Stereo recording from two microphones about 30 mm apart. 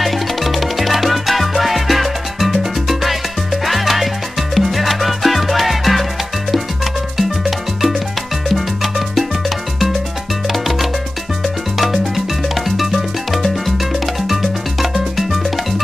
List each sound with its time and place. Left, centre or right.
0.0 s music: centre
3.6 s salsa music: centre
4.6 s music: centre
7.2 s music: centre
12.6 s music: centre